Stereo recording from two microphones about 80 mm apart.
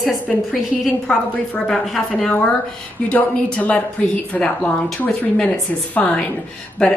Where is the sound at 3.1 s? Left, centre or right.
Centre.